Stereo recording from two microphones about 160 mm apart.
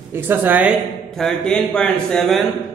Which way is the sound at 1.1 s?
5° left (ahead or behind).